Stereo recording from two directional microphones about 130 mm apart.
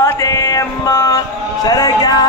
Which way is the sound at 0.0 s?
25° left (ahead or behind).